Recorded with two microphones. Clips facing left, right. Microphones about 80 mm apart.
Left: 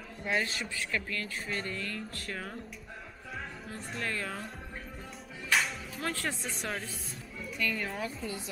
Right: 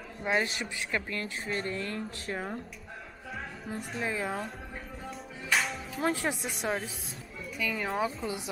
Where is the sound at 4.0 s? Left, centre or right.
Centre.